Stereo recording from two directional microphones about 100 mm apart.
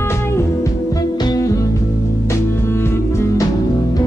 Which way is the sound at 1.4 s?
35° left (ahead or behind).